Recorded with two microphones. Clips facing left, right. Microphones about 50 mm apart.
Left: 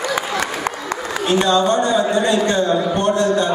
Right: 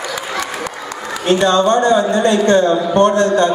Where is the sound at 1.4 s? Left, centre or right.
Right.